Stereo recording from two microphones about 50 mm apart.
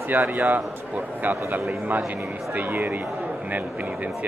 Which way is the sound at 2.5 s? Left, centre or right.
Right.